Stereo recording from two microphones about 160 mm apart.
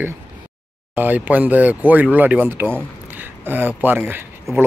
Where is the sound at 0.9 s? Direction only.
10° right (ahead or behind).